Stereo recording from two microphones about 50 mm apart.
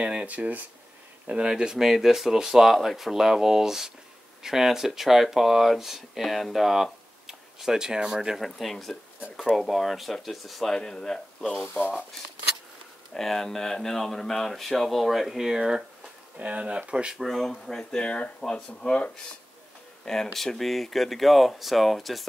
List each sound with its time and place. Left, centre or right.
0.0 s speech: right
1.2 s speech: centre
8.4 s speech: centre
10.7 s speech: centre
13.1 s speech: centre
16.3 s speech: right
17.1 s speech: centre
20.3 s speech: centre